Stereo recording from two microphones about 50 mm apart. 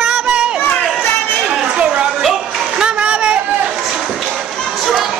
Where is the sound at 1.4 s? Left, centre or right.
Right.